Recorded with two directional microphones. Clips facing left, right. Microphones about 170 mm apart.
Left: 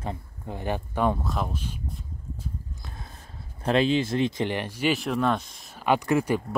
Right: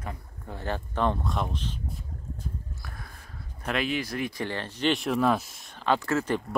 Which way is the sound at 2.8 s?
25° left (ahead or behind).